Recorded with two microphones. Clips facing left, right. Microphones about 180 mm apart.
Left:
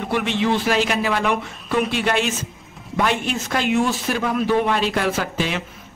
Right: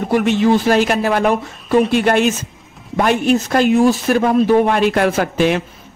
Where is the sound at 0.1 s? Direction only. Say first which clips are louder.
Right 7 dB; 45° right (ahead or behind).